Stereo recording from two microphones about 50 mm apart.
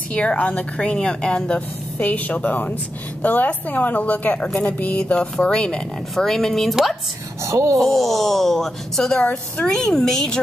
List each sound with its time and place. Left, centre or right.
0.1 s a woman's voice: left
2.0 s a woman's voice: left
5.1 s a woman's voice: centre
6.1 s speech: centre
6.7 s a woman's voice: centre
7.4 s speech: right
7.8 s speech: centre
9.1 s a woman's voice: left
9.7 s speech: centre